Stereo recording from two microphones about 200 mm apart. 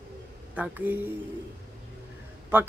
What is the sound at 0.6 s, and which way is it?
Speech, 10° right (ahead or behind).